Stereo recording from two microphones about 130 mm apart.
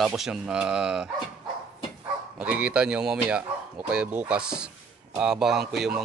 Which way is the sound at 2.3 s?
10° right (ahead or behind).